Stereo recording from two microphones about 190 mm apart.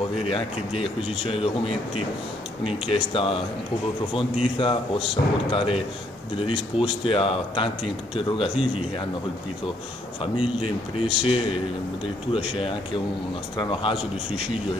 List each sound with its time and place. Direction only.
0.3 s speech: 30° left (ahead or behind)
4.6 s speech: 30° left (ahead or behind)
10.2 s speech: 30° left (ahead or behind)